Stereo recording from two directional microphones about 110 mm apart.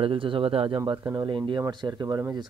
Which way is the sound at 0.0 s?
55° right (ahead or behind).